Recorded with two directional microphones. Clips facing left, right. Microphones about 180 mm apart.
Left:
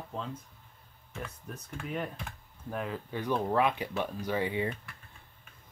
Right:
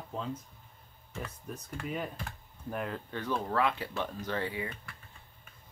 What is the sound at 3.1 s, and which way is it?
Speech, 15° left (ahead or behind).